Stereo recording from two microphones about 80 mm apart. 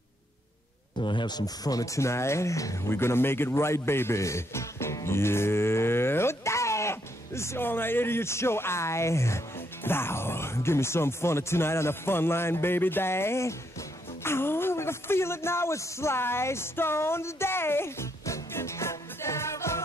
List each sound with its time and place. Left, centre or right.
1.0 s speech: left
2.0 s speech: left